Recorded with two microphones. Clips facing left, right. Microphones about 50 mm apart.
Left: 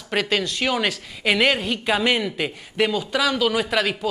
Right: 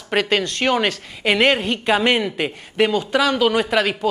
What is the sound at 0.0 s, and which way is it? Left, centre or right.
Speech, centre.